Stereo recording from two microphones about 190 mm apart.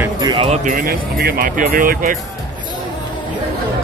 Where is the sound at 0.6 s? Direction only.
50° right (ahead or behind).